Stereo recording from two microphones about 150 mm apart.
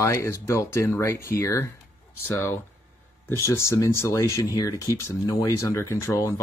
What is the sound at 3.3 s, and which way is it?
Speech, 20° left (ahead or behind).